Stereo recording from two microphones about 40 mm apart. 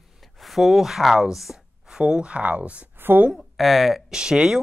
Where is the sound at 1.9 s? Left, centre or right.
Right.